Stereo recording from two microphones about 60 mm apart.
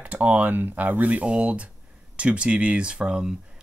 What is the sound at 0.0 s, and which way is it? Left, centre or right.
Speech, right.